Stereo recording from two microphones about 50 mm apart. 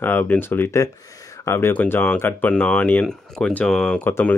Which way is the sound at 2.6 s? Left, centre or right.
Left.